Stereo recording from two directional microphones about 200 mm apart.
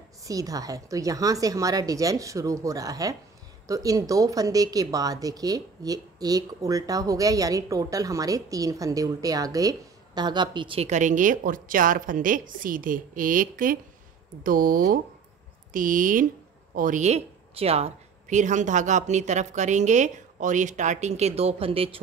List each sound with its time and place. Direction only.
0.2 s a woman's voice: 15° right (ahead or behind)